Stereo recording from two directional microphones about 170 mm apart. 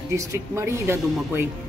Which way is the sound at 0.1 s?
15° right (ahead or behind).